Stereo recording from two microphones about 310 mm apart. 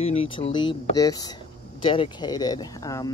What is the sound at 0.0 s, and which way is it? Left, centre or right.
Speech, centre.